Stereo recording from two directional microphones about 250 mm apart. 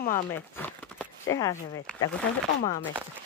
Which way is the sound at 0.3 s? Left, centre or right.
Centre.